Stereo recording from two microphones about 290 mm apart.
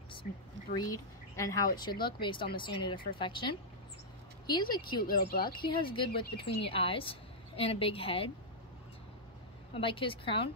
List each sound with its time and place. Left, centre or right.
0.3 s speech: left
0.7 s speech: centre
5.0 s speech: left
5.5 s speech: centre
9.8 s speech: centre